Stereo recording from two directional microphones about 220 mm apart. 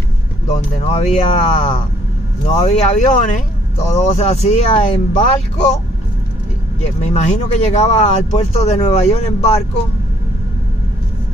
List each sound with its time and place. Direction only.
0.5 s speech: 25° left (ahead or behind)
7.0 s speech: 30° left (ahead or behind)